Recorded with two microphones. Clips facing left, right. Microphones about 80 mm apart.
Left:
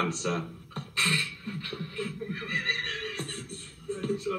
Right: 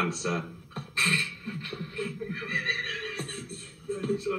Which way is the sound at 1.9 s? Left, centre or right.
Left.